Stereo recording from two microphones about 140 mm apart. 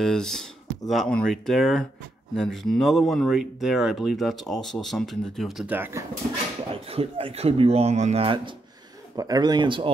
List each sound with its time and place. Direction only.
0.0 s speech: 5° left (ahead or behind)
5.7 s speech: 15° right (ahead or behind)
6.7 s speech: 40° right (ahead or behind)
9.1 s speech: 25° right (ahead or behind)